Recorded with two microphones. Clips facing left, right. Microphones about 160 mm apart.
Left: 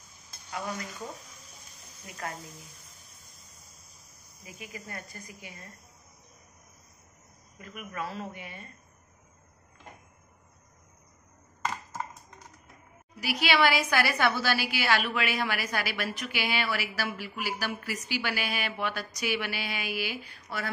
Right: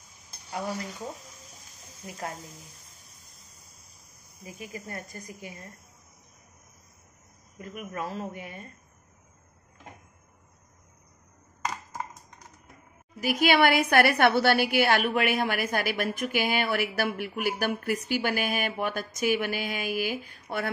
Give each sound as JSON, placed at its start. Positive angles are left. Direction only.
{"t": 4.6, "sound": "speech", "side_deg": -30}
{"t": 7.5, "sound": "a woman's voice", "side_deg": -35}
{"t": 11.6, "sound": "computer keyboard", "side_deg": -15}
{"t": 13.2, "sound": "a woman's voice", "side_deg": -50}